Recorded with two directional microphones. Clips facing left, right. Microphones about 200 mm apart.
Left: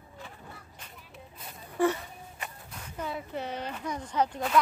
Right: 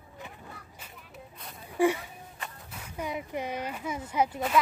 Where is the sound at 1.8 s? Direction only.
10° right (ahead or behind).